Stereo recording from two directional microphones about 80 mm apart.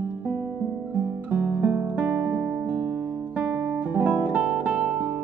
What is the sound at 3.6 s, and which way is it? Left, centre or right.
Guitar, right.